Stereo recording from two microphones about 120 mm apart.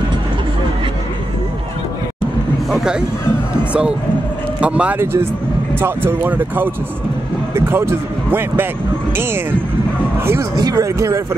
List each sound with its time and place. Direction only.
2.7 s speech: 5° right (ahead or behind)
4.6 s speech: 10° right (ahead or behind)
10.5 s speech: 30° right (ahead or behind)